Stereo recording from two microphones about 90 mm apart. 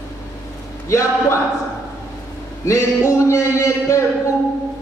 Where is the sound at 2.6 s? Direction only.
40° left (ahead or behind).